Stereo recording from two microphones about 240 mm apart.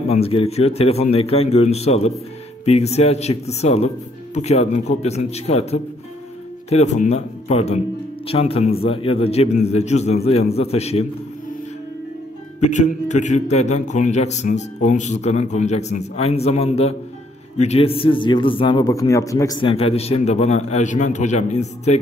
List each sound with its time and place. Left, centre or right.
0.1 s a man's voice: left
12.5 s a man's voice: left